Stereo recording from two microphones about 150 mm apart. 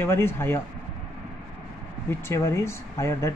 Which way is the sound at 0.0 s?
15° left (ahead or behind).